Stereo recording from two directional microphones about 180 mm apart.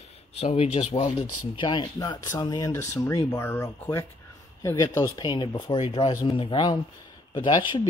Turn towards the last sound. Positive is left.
turn(degrees=25)  # may be behind; listen again after turning